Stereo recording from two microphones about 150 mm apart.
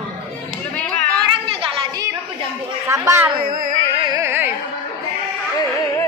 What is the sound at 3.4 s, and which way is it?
Music, 65° right (ahead or behind).